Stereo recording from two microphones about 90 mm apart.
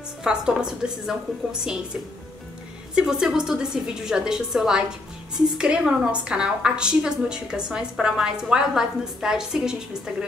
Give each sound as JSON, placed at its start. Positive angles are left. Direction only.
{"t": 0.2, "sound": "a woman's voice", "side_deg": -10}
{"t": 2.9, "sound": "a woman's voice", "side_deg": -10}